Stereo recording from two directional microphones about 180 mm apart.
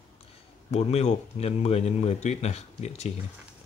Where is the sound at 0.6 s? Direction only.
35° left (ahead or behind).